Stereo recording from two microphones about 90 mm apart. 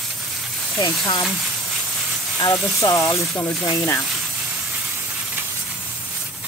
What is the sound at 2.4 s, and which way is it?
Speech, 45° left (ahead or behind).